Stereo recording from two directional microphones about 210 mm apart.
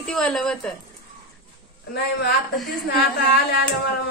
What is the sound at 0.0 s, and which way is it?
Speech, centre (ahead or behind).